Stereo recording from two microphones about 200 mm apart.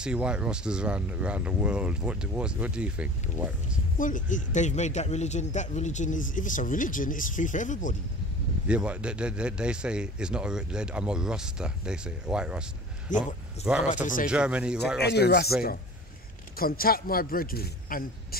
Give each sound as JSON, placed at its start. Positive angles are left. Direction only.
{"t": 0.0, "sound": "speech", "side_deg": -5}
{"t": 4.0, "sound": "speech", "side_deg": 40}
{"t": 8.6, "sound": "speech", "side_deg": -5}
{"t": 13.1, "sound": "speech", "side_deg": 40}
{"t": 13.7, "sound": "speech", "side_deg": -5}
{"t": 14.0, "sound": "a man's voice", "side_deg": 40}
{"t": 14.3, "sound": "speech", "side_deg": -5}
{"t": 15.0, "sound": "speech", "side_deg": 55}
{"t": 16.5, "sound": "a man's voice", "side_deg": 45}